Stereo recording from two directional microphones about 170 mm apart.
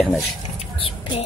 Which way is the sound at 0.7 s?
30° left (ahead or behind).